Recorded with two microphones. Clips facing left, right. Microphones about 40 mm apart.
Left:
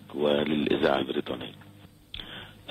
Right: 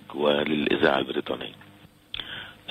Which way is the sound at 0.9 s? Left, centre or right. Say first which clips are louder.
Right 2 dB; centre.